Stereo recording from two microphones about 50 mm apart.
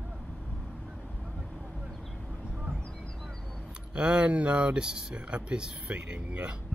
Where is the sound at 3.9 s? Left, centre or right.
Centre.